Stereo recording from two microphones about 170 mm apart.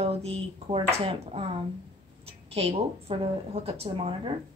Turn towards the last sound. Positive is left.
turn(degrees=-35)  # may be behind; listen again after turning